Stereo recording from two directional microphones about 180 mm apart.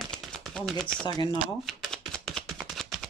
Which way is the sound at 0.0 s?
Centre (ahead or behind).